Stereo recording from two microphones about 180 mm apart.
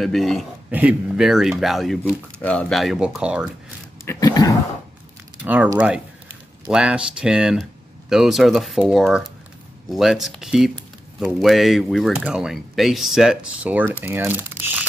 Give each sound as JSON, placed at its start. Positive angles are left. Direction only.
{"t": 0.0, "sound": "speech", "side_deg": 0}
{"t": 4.0, "sound": "speech", "side_deg": 20}
{"t": 5.4, "sound": "speech", "side_deg": -10}